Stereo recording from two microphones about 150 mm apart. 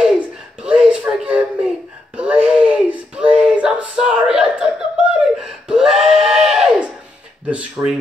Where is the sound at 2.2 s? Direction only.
10° right (ahead or behind).